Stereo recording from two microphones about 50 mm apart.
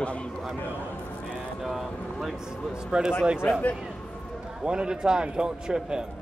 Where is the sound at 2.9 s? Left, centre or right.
Centre.